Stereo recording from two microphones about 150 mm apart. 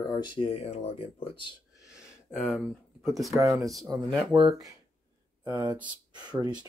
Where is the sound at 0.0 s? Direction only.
30° left (ahead or behind).